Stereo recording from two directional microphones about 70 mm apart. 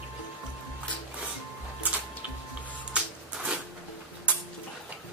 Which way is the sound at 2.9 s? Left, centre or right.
Centre.